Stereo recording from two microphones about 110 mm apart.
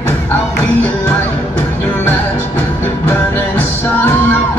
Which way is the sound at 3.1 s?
20° left (ahead or behind).